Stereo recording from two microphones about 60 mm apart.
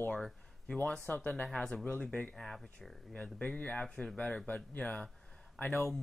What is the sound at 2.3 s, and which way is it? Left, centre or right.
Speech, centre.